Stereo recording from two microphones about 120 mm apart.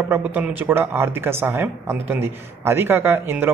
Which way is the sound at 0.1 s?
15° right (ahead or behind).